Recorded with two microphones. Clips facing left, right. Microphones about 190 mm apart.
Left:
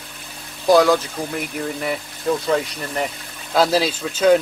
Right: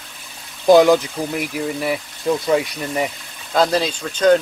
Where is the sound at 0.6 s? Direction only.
20° right (ahead or behind).